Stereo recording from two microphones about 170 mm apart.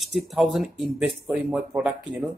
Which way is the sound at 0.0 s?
Centre (ahead or behind).